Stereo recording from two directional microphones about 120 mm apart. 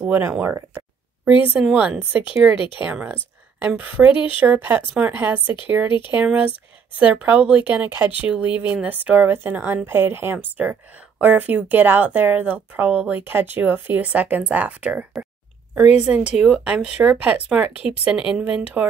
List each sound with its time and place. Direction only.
0.0 s speech: 10° right (ahead or behind)
1.5 s speech: 10° right (ahead or behind)
2.5 s speech: 45° left (ahead or behind)
2.9 s a woman's voice: 10° right (ahead or behind)